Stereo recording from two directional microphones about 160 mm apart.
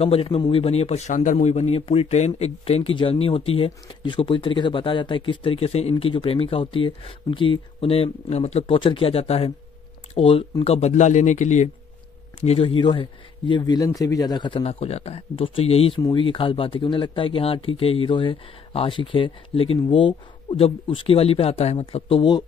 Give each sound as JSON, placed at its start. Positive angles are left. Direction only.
{"t": 0.0, "sound": "a man's voice", "side_deg": 35}
{"t": 16.0, "sound": "a man's voice", "side_deg": 25}